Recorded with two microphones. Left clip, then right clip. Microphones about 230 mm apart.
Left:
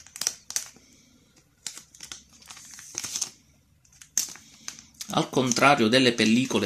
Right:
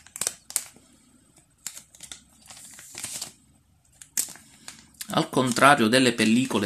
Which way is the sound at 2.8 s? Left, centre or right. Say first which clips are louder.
Left 5 dB; centre.